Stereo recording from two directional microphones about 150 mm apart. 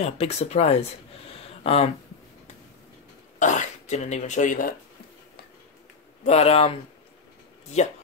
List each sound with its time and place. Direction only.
0.0 s speech: 45° left (ahead or behind)
3.3 s speech: 55° left (ahead or behind)
6.2 s speech: 45° left (ahead or behind)